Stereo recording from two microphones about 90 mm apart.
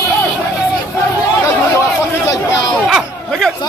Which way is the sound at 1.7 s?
30° left (ahead or behind).